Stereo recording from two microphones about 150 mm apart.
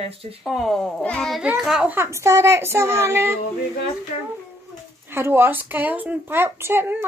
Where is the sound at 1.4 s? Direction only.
5° right (ahead or behind).